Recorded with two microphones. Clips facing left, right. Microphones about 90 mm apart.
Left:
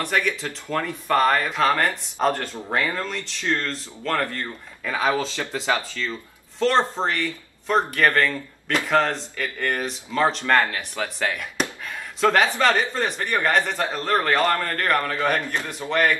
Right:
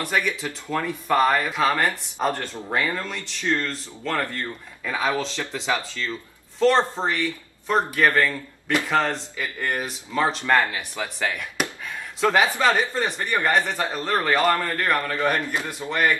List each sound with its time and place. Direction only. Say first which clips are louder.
0.0 s speech: left 1 dB; 5° right (ahead or behind)
15.3 s a man's voice: even; 15° right (ahead or behind)
15.9 s speech: left 1 dB; 5° right (ahead or behind)